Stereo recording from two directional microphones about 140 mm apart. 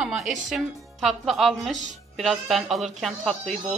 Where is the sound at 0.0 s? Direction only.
Centre (ahead or behind).